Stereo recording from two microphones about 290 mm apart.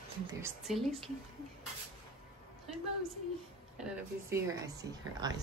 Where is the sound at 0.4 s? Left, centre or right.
Centre.